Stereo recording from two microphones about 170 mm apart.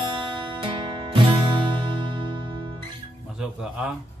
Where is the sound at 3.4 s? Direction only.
5° right (ahead or behind).